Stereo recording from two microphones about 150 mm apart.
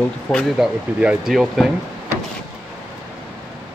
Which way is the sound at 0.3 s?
5° left (ahead or behind).